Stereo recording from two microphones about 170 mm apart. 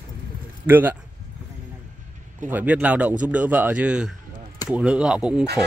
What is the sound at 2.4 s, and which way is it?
A man's voice, 10° right (ahead or behind).